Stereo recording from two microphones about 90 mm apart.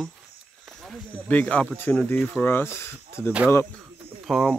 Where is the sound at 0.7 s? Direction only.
Centre (ahead or behind).